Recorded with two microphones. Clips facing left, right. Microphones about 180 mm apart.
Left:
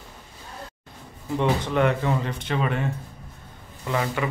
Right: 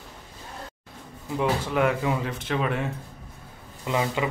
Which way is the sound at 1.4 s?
5° right (ahead or behind).